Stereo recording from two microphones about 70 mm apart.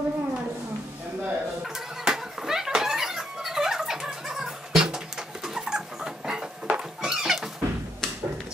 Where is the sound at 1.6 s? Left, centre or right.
Centre.